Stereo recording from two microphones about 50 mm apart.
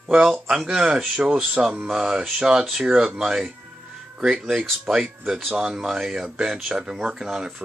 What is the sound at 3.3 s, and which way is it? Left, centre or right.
Speech, centre.